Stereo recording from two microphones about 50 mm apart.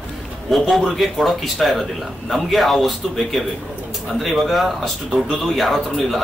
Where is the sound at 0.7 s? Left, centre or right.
Centre.